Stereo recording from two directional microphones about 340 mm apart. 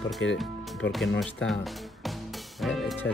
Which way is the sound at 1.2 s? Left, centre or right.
Centre.